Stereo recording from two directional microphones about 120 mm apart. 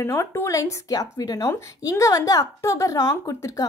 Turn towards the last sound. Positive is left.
turn(degrees=25)  # may be behind; listen again after turning